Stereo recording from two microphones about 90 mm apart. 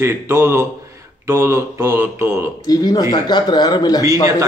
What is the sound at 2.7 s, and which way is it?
Speech, 45° left (ahead or behind).